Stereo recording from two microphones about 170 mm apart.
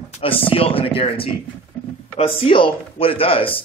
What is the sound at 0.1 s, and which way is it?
Speech, 35° left (ahead or behind).